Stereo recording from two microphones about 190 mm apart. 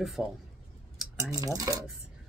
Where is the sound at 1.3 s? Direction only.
20° right (ahead or behind).